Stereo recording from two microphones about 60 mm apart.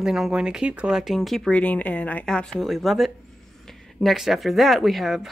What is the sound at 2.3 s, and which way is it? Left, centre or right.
Speech, centre.